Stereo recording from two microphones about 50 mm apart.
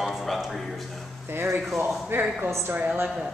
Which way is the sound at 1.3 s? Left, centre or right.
Right.